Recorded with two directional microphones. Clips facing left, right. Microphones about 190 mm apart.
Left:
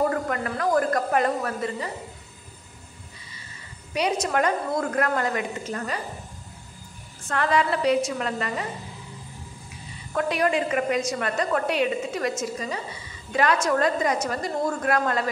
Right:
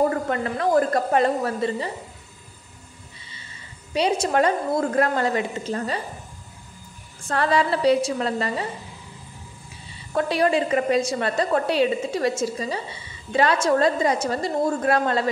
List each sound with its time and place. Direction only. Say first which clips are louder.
0.1 s a woman's voice: right 2 dB; 25° right (ahead or behind)
3.9 s a woman's voice: right 3 dB; 30° right (ahead or behind)
7.2 s a woman's voice: right 2 dB; 30° right (ahead or behind)
10.1 s a woman's voice: right 3 dB; 30° right (ahead or behind)